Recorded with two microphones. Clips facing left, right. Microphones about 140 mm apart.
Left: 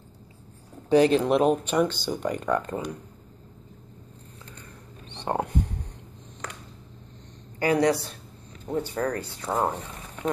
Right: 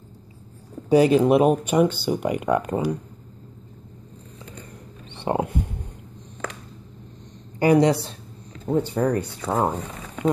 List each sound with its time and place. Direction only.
0.8 s speech: 10° right (ahead or behind)
5.2 s a sound: 10° right (ahead or behind)
7.5 s speech: 20° right (ahead or behind)